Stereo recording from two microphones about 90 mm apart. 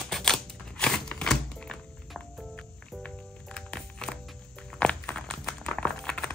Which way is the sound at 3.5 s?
10° left (ahead or behind).